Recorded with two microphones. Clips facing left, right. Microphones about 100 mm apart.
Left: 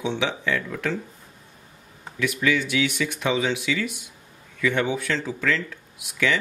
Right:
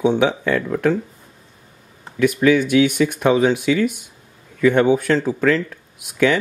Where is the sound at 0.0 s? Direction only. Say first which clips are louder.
Right 9 dB; 50° right (ahead or behind).